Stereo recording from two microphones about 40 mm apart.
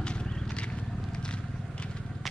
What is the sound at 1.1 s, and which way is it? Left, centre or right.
Vehicle, left.